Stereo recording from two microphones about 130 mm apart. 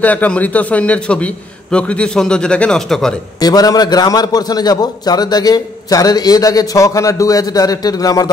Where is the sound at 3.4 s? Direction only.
30° left (ahead or behind).